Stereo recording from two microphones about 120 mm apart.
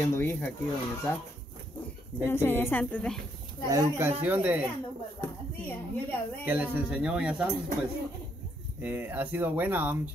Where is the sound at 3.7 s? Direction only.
25° right (ahead or behind).